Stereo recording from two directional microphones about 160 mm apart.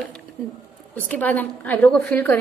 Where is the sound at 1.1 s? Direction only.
10° left (ahead or behind).